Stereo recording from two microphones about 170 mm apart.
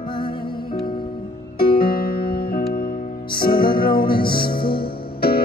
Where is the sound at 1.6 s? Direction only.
60° left (ahead or behind).